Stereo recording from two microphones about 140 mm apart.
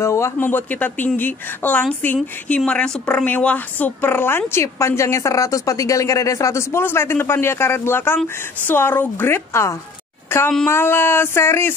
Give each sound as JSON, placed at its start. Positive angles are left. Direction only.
{"t": 0.0, "sound": "a woman's voice", "side_deg": 20}